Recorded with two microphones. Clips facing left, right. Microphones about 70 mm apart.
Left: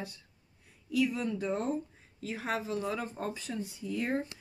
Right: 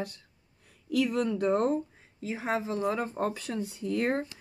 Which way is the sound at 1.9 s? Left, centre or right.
Right.